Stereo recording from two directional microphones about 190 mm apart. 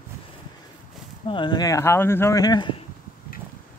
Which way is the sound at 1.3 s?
25° left (ahead or behind).